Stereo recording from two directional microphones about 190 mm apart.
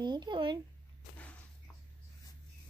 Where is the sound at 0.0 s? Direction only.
25° right (ahead or behind).